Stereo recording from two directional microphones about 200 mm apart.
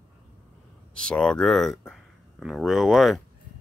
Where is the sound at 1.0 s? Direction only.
5° left (ahead or behind).